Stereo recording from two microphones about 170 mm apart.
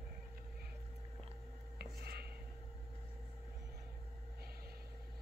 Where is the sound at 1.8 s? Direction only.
70° right (ahead or behind).